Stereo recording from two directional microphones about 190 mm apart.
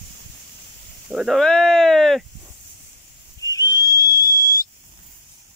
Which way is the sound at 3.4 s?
15° left (ahead or behind).